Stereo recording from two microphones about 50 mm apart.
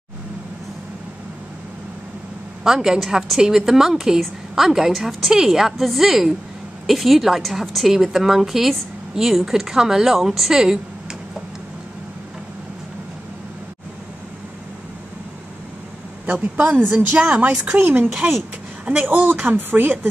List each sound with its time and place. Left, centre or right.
2.6 s a woman's voice: centre
16.3 s speech: right
16.8 s a woman's voice: right
17.2 s speech: right
17.7 s a woman's voice: right
18.0 s speech: right
18.9 s speech: right